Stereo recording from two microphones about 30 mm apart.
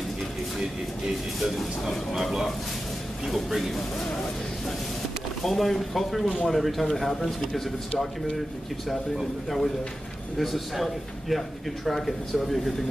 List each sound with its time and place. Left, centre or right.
3.4 s a man's voice: centre
5.4 s a man's voice: centre
8.8 s a man's voice: centre